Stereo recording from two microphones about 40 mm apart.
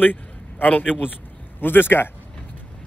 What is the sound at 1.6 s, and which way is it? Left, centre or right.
Speech, left.